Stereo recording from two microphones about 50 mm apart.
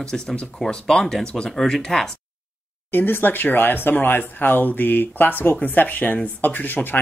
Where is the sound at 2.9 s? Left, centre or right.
Left.